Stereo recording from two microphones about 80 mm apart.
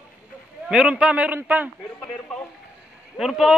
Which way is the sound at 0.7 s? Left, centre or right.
Centre.